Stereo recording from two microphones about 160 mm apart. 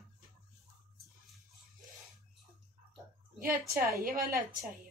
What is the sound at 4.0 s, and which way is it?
Speech, 65° right (ahead or behind).